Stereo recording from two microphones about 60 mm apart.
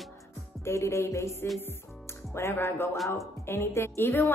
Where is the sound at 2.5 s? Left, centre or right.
Left.